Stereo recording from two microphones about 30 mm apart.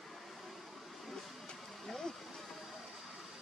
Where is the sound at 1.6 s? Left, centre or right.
Centre.